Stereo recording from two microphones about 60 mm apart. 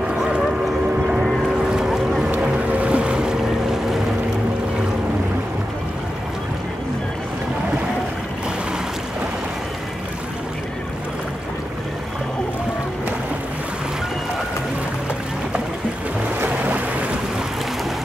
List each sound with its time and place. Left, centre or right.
0.1 s boat: centre
1.7 s boat: centre
16.4 s boat: right